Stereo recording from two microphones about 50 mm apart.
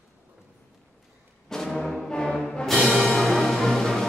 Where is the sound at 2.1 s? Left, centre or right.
Centre.